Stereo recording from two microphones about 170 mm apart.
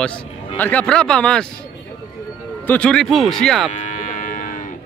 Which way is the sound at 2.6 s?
5° left (ahead or behind).